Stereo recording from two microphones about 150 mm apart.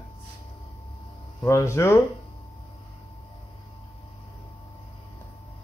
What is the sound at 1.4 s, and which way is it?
Speech, 20° left (ahead or behind).